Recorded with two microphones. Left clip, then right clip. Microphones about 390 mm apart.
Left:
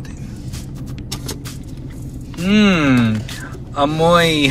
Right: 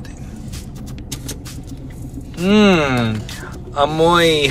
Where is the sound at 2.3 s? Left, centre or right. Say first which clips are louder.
Right 2 dB; centre.